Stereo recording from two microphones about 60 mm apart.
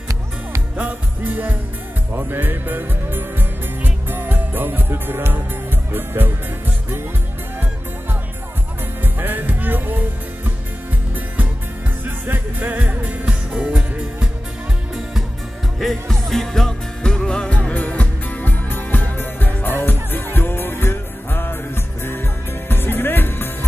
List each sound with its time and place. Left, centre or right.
0.7 s music: right
9.0 s music: right
12.0 s music: right; by 14.3 s centre
15.8 s music: centre; by 23.5 s left